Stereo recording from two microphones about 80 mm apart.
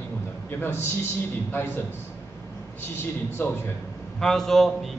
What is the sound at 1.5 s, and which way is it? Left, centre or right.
Speech, left.